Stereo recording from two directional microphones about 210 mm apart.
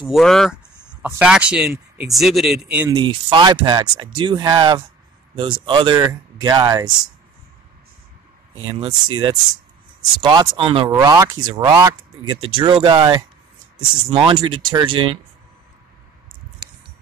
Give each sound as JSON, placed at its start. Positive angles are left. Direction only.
{"t": 0.0, "sound": "speech", "side_deg": 0}
{"t": 2.9, "sound": "speech", "side_deg": -25}
{"t": 8.5, "sound": "speech", "side_deg": -20}